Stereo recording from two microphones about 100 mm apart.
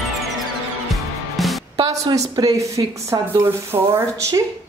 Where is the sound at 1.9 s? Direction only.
35° right (ahead or behind).